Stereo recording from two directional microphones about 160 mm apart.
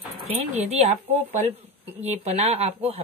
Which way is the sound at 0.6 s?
45° right (ahead or behind).